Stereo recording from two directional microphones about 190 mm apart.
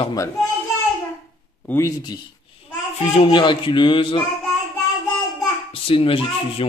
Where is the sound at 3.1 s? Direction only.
25° left (ahead or behind).